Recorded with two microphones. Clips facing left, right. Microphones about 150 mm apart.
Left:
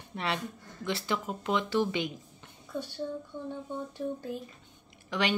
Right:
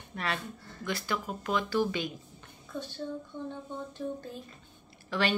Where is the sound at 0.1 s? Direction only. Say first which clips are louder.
Left 2 dB; 25° left (ahead or behind).